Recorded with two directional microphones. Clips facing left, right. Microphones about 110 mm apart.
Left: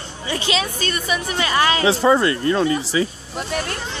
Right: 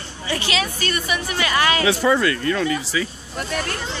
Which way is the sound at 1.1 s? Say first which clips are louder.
Left 2 dB; 25° left (ahead or behind).